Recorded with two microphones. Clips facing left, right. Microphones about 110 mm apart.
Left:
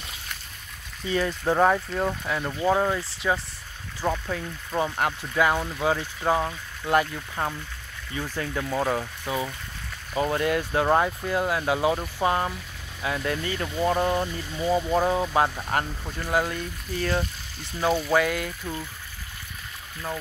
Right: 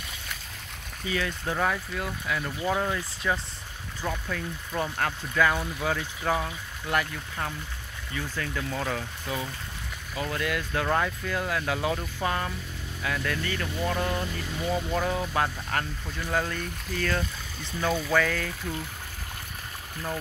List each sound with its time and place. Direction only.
1.1 s speech: 30° left (ahead or behind)
2.2 s speech: 25° left (ahead or behind)